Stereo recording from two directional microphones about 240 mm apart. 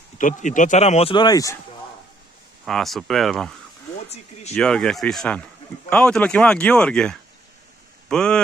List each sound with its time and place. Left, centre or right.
0.2 s a man's voice: left; by 1.6 s centre
2.6 s a man's voice: centre
4.1 s speech: left
4.6 s a man's voice: centre